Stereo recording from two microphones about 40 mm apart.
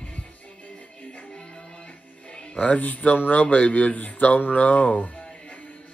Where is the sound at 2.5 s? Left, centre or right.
Left.